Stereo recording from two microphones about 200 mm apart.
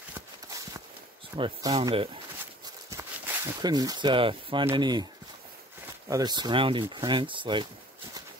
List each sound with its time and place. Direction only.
1.3 s speech: 25° right (ahead or behind)
2.9 s speech: 15° right (ahead or behind)
6.0 s speech: 20° right (ahead or behind)